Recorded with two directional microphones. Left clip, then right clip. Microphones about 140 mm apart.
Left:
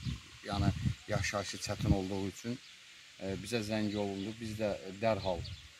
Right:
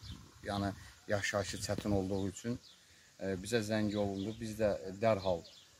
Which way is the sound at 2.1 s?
35° right (ahead or behind).